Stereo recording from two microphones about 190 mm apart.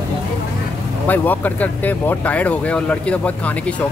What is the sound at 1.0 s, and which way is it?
Speech, 10° left (ahead or behind).